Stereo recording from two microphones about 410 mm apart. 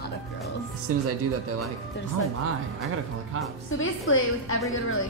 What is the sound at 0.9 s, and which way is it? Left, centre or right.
Speech, right.